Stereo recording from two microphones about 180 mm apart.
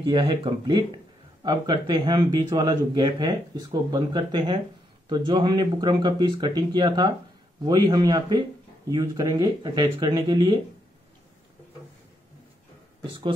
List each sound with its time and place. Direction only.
0.0 s speech: 25° right (ahead or behind)
13.0 s speech: 30° right (ahead or behind)